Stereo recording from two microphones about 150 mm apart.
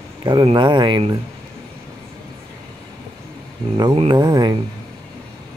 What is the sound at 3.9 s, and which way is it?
Speech, 30° right (ahead or behind).